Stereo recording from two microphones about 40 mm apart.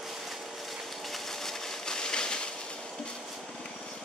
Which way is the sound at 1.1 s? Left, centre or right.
Centre.